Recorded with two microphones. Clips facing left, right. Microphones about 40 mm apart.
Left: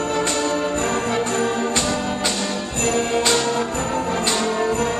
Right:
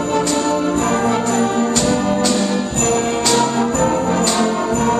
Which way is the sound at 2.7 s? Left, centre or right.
Centre.